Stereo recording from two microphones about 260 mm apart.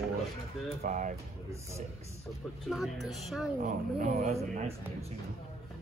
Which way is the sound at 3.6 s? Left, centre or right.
Right.